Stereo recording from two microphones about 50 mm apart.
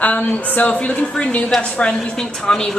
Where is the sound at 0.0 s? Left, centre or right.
Left.